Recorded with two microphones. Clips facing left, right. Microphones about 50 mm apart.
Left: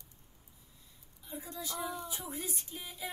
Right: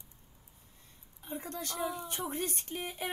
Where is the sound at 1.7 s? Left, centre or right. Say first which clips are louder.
Right 2 dB; centre.